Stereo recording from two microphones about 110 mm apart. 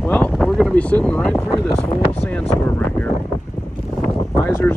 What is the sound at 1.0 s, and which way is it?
Speech, 10° left (ahead or behind).